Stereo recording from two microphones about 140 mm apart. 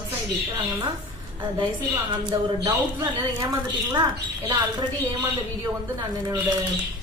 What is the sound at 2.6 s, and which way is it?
Speech, 20° right (ahead or behind).